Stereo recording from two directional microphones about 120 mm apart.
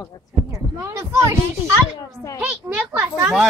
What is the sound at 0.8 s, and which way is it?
Speech, 25° right (ahead or behind).